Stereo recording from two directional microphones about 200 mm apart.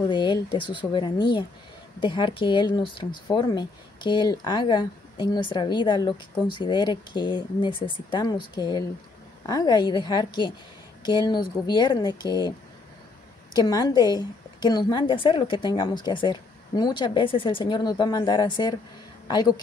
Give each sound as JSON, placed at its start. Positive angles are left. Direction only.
{"t": 0.0, "sound": "speech", "side_deg": 20}